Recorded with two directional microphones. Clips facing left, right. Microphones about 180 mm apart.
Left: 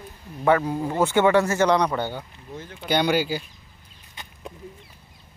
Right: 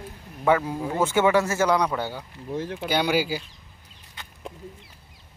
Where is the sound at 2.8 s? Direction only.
5° right (ahead or behind).